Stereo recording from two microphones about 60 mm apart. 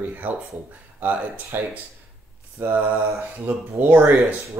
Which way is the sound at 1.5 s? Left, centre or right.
Right.